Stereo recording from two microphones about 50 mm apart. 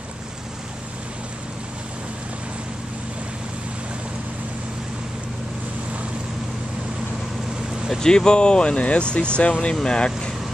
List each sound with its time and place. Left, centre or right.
8.0 s speech: centre